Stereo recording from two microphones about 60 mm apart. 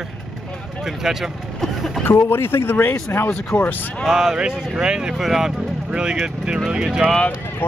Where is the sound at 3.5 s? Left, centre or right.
Left.